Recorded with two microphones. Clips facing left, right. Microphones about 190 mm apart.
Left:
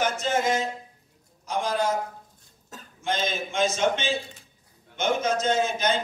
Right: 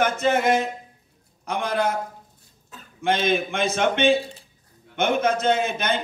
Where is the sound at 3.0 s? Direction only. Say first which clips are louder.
Right 6 dB; 60° right (ahead or behind).